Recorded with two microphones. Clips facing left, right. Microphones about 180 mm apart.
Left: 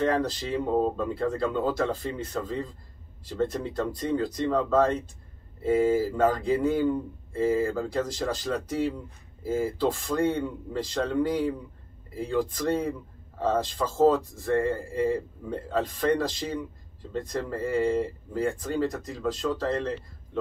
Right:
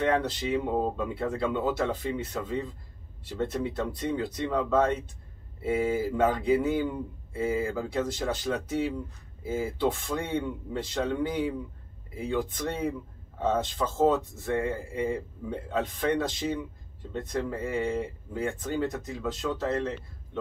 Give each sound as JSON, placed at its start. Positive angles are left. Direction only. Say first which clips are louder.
{"t": 0.0, "sound": "speech", "louder": "left 1 dB", "side_deg": -5}